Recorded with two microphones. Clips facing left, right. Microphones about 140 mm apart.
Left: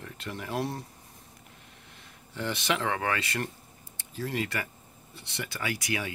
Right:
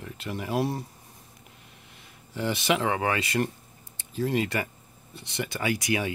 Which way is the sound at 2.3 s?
10° right (ahead or behind).